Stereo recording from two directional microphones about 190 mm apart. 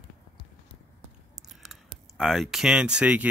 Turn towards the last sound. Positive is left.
turn(degrees=-5)  # may be behind; listen again after turning